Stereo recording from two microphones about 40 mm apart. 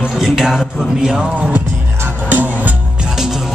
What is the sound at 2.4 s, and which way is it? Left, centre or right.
Music, right.